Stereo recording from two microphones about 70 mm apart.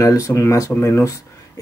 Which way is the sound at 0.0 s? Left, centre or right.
Left.